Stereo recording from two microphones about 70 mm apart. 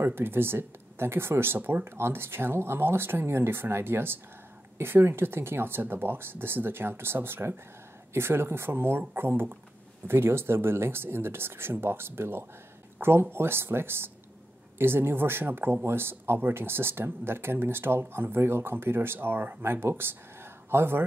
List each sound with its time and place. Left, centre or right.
0.0 s speech: right